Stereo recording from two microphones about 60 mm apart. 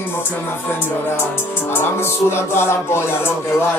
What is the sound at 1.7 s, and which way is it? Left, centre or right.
Music, left.